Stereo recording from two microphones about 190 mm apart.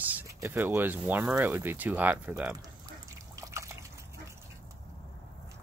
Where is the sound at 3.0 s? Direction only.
15° right (ahead or behind).